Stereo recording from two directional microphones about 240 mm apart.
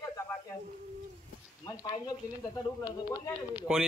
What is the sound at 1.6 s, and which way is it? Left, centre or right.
Speech, centre.